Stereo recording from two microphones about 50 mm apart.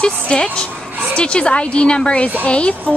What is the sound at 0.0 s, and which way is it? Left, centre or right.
A woman's voice, centre.